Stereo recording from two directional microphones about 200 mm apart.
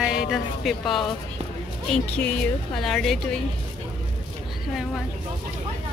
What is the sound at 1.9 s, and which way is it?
Speech, 5° left (ahead or behind).